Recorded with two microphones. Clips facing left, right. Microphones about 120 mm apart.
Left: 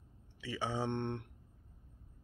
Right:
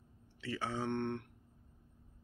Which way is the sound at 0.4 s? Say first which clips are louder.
Left 1 dB; 10° left (ahead or behind).